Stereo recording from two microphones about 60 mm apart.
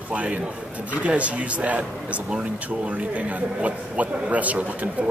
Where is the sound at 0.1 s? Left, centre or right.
Right.